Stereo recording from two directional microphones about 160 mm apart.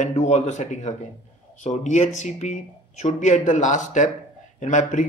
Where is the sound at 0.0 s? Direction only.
45° left (ahead or behind).